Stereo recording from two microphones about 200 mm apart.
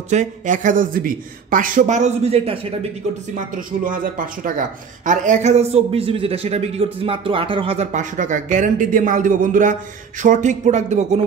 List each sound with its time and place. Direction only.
0.1 s speech: 40° right (ahead or behind)
3.3 s speech: 40° right (ahead or behind)